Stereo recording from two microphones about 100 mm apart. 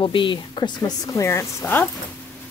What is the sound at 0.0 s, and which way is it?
Speech, 55° left (ahead or behind).